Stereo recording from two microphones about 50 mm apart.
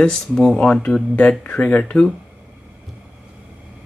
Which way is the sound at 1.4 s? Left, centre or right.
Left.